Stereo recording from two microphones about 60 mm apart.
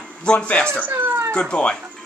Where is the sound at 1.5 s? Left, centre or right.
Centre.